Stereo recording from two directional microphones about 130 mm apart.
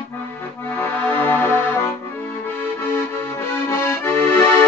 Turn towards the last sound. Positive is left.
turn(degrees=15)  # may be behind; listen again after turning